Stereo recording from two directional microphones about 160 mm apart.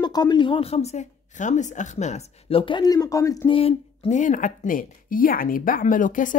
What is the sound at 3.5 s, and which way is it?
Speech, 35° left (ahead or behind).